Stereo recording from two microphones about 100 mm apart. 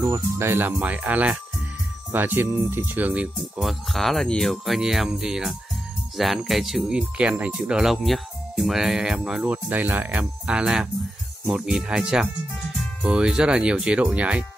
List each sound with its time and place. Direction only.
0.0 s speech: 30° right (ahead or behind)
3.6 s speech: centre (ahead or behind)
9.4 s speech: 15° right (ahead or behind)